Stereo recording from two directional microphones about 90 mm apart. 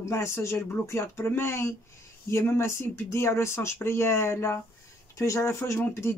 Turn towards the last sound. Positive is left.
turn(degrees=30)  # may be behind; listen again after turning